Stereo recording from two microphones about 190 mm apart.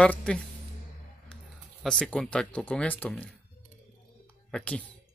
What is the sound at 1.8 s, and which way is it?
Speech, 5° left (ahead or behind).